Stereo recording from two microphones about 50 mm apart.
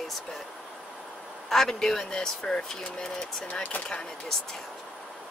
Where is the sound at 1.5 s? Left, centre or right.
Centre.